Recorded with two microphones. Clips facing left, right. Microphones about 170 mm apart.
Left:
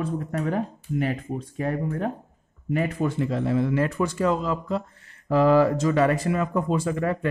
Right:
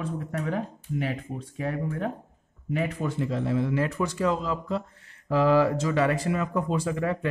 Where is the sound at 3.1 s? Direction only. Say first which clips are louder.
Left 1 dB; 60° left (ahead or behind).